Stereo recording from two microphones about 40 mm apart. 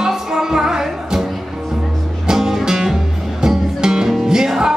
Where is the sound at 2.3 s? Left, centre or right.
Centre.